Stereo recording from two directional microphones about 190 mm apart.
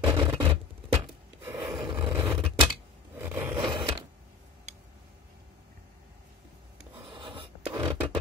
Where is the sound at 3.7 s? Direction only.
25° right (ahead or behind).